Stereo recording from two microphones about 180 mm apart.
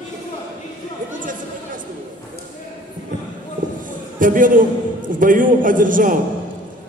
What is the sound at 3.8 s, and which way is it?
A man's voice, 50° right (ahead or behind).